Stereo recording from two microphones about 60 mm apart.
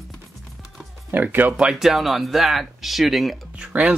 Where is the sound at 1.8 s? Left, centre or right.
Centre.